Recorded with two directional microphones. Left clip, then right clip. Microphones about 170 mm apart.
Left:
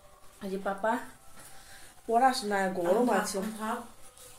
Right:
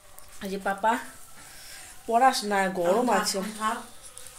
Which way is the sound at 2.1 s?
25° right (ahead or behind).